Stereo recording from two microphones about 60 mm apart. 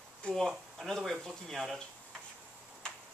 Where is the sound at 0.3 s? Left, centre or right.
Centre.